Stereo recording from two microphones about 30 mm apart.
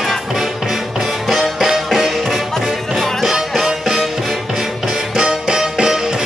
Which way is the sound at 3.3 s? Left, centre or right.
Centre.